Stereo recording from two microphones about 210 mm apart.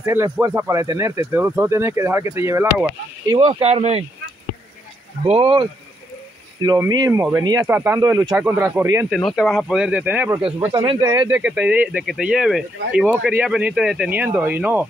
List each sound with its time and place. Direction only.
0.0 s speech: 15° right (ahead or behind)
3.3 s speech: 30° right (ahead or behind)
5.2 s speech: 25° right (ahead or behind); by 9.0 s 10° right (ahead or behind)
9.1 s speech: centre (ahead or behind)
10.8 s speech: 20° right (ahead or behind)